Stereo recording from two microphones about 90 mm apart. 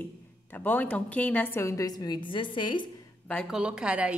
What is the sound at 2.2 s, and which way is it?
Speech, 65° left (ahead or behind).